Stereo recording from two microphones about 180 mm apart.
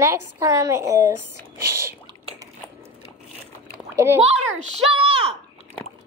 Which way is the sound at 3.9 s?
15° right (ahead or behind).